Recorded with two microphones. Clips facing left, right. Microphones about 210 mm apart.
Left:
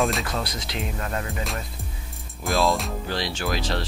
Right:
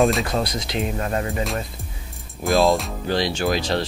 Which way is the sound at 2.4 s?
Centre (ahead or behind).